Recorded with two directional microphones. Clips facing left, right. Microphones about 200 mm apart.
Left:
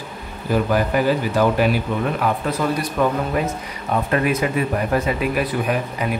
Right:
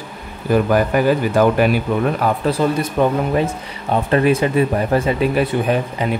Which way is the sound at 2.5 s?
25° right (ahead or behind).